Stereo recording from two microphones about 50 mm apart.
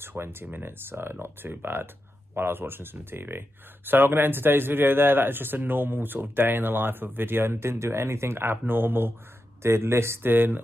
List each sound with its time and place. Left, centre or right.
0.0 s speech: right
9.6 s speech: right
10.2 s speech: right